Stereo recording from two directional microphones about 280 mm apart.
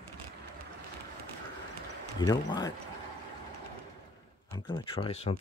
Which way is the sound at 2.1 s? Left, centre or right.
Centre.